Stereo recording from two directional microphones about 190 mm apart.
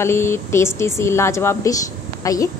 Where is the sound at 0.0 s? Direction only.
15° left (ahead or behind).